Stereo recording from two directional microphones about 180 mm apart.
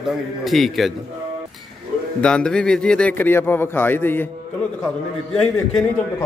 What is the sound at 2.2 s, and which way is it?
A man's voice, 5° left (ahead or behind).